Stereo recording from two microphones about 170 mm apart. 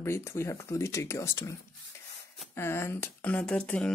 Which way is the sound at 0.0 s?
15° left (ahead or behind).